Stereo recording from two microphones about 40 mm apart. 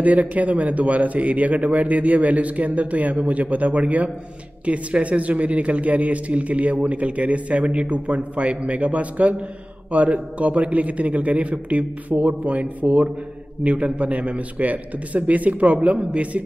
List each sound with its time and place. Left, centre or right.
0.0 s a man's voice: right